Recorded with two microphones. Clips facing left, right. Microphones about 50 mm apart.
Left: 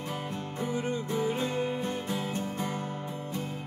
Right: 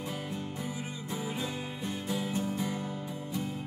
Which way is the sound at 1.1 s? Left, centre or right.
Left.